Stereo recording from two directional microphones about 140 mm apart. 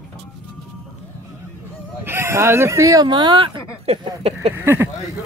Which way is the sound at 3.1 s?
35° right (ahead or behind).